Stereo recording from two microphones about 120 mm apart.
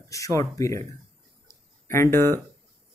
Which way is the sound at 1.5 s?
20° left (ahead or behind).